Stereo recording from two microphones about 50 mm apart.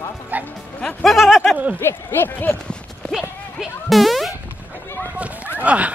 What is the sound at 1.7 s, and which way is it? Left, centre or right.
Speech, left.